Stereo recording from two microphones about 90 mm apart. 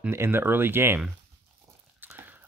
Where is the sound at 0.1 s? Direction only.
25° right (ahead or behind).